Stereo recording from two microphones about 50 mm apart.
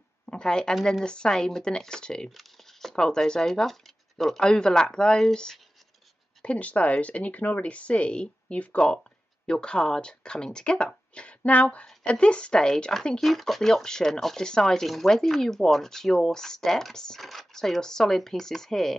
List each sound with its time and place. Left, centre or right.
0.3 s a woman's voice: centre
2.3 s speech: centre
6.4 s speech: left
13.2 s speech: centre
17.2 s speech: centre